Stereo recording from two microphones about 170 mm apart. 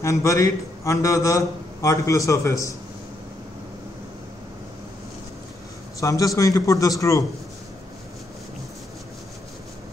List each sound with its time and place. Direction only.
0.0 s a man's voice: 20° left (ahead or behind)
5.9 s a man's voice: 20° left (ahead or behind)